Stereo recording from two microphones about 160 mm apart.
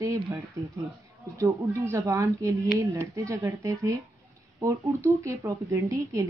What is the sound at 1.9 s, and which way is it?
A woman's voice, 15° right (ahead or behind).